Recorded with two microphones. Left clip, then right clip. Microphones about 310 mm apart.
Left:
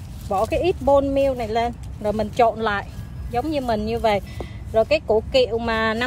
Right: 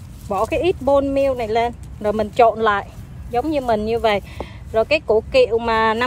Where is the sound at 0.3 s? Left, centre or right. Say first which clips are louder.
Right 2 dB; right.